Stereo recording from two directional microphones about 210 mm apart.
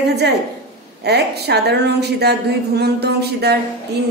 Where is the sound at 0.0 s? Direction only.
50° right (ahead or behind).